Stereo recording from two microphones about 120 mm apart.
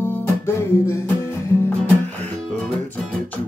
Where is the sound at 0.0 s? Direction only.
20° left (ahead or behind).